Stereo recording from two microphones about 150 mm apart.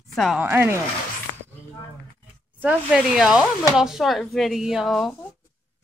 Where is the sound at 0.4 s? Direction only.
15° right (ahead or behind).